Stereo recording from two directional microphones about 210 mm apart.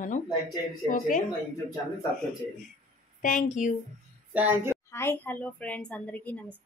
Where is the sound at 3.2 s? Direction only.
35° left (ahead or behind).